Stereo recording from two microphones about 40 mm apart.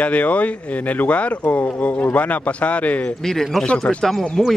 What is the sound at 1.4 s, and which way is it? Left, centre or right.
Speech, left.